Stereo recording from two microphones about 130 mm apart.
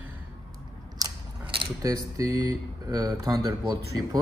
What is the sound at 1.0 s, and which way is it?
Gears, 30° right (ahead or behind).